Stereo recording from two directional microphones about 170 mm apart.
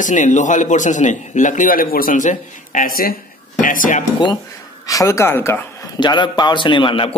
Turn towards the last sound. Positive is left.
turn(degrees=30)  # may be behind; listen again after turning